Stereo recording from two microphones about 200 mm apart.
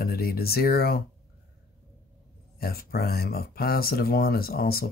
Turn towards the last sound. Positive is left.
turn(degrees=50)  # may be behind; listen again after turning